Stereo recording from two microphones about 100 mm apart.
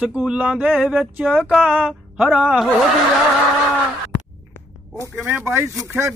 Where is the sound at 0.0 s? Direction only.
10° right (ahead or behind).